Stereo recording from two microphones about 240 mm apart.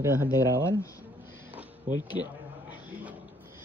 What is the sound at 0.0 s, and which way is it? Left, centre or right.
Speech, centre.